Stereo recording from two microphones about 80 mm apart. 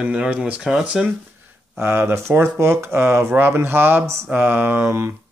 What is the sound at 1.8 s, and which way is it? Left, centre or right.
Speech, right.